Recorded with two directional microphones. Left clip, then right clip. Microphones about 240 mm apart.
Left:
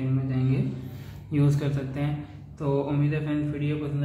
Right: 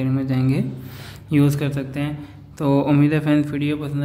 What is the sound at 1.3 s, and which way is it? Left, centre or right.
A man's voice, right.